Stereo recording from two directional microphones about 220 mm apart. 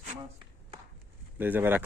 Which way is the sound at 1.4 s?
10° right (ahead or behind).